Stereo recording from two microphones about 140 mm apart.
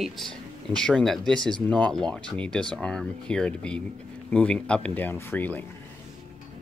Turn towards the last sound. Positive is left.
turn(degrees=15)  # may be behind; listen again after turning